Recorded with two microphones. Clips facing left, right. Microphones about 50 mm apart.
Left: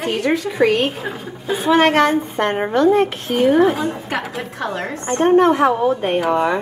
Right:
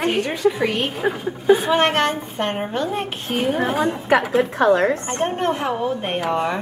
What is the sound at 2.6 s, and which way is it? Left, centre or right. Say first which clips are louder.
Speech: left 9 dB; left.